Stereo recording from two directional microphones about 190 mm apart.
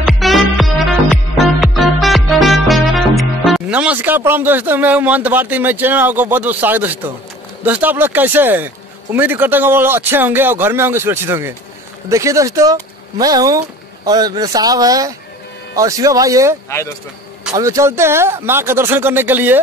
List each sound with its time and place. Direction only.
0.0 s music: centre (ahead or behind)
7.6 s a man's voice: 10° right (ahead or behind)
17.6 s speech: 15° right (ahead or behind)